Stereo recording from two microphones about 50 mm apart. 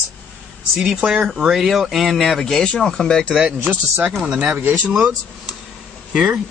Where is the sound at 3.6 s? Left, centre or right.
Right.